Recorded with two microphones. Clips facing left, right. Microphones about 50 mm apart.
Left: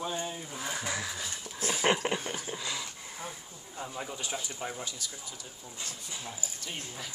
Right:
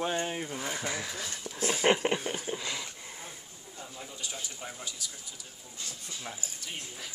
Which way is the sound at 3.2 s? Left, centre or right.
Centre.